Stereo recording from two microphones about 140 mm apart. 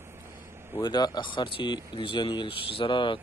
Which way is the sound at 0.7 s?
30° left (ahead or behind).